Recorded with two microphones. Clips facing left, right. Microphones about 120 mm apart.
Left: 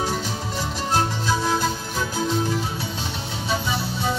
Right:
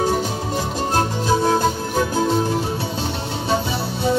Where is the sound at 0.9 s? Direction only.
55° right (ahead or behind).